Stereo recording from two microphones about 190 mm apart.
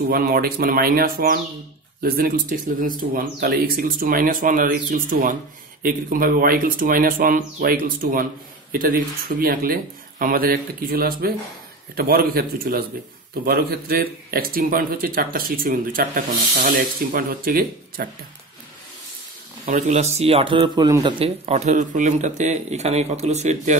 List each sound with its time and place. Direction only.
0.1 s a man's voice: 50° right (ahead or behind)
19.6 s speech: 40° right (ahead or behind)